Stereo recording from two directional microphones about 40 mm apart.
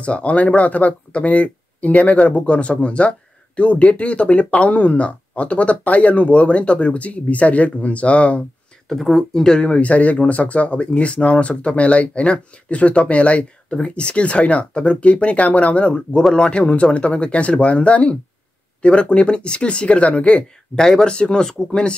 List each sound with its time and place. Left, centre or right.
0.0 s speech: left
8.8 s speech: centre
9.3 s speech: centre